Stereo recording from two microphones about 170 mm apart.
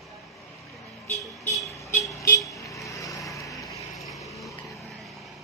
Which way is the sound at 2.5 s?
20° left (ahead or behind).